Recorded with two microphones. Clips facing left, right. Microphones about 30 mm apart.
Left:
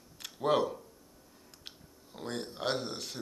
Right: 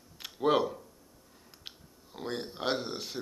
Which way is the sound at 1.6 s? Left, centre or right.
Centre.